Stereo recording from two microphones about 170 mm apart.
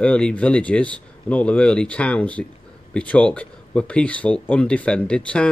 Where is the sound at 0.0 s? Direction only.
5° left (ahead or behind).